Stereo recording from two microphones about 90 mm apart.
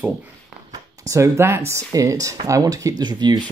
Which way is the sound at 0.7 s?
35° right (ahead or behind).